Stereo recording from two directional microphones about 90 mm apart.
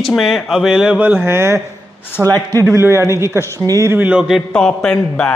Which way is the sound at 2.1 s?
25° left (ahead or behind).